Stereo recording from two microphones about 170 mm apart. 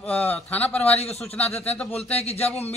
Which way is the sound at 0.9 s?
40° left (ahead or behind).